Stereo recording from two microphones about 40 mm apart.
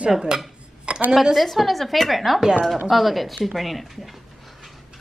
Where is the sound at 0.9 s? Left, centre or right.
Right.